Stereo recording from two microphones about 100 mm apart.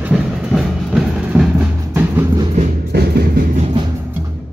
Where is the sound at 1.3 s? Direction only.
20° right (ahead or behind).